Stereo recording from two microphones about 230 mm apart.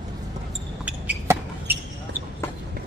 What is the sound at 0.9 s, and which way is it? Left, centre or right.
Basketball bounce, centre.